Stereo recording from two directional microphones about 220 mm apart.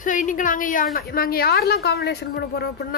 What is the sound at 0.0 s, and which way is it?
A woman's voice, 35° left (ahead or behind).